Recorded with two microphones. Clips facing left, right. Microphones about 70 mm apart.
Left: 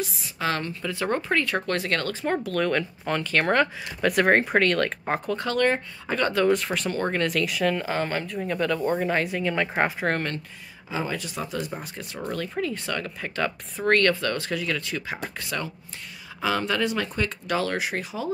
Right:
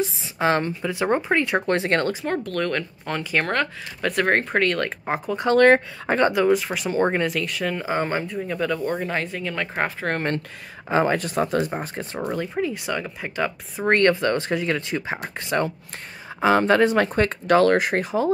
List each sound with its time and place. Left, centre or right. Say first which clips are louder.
0.0 s a woman's voice: right 6 dB; right
2.2 s speech: even; centre
6.0 s a woman's voice: right 5 dB; right
6.3 s speech: right 2 dB; centre
7.0 s a woman's voice: right 6 dB; right
7.2 s speech: left 1 dB; centre
7.8 s speech: right 3 dB; centre
10.9 s speech: right 9 dB; right
12.2 s speech: right 3 dB; centre
13.9 s a woman's voice: right 5 dB; right